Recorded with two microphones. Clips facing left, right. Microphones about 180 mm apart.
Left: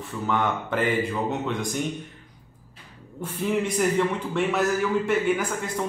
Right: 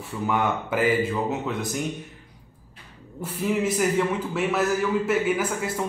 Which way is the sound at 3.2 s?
5° right (ahead or behind).